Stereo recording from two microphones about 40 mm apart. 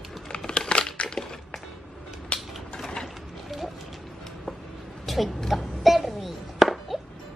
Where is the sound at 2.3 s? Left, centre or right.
Left.